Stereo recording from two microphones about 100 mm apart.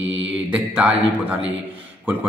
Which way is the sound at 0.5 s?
15° right (ahead or behind).